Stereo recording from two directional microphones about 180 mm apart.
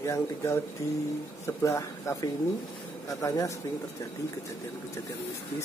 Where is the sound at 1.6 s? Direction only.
15° left (ahead or behind).